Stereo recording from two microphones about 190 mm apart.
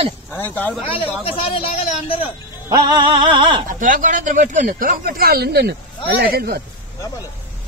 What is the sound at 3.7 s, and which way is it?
Speech, 45° right (ahead or behind).